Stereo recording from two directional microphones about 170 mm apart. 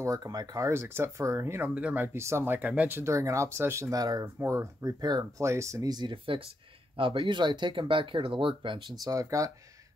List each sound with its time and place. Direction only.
0.0 s speech: 20° right (ahead or behind)